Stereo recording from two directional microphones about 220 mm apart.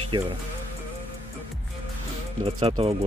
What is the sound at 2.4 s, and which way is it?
Speech, 25° right (ahead or behind).